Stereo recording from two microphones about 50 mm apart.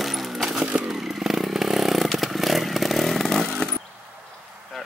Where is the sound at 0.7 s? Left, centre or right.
Centre.